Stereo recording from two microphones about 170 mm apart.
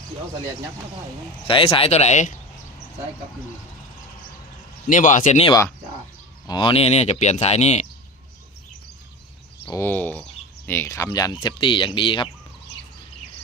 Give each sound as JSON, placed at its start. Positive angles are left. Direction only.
{"t": 1.5, "sound": "speech", "side_deg": 35}
{"t": 4.8, "sound": "a man's voice", "side_deg": 50}
{"t": 6.4, "sound": "speech", "side_deg": 25}
{"t": 9.7, "sound": "speech", "side_deg": 15}